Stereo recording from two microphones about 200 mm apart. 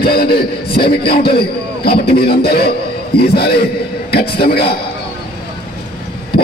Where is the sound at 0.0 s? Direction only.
50° left (ahead or behind).